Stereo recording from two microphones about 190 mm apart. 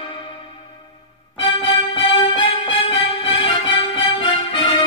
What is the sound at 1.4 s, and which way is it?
Music, 25° left (ahead or behind).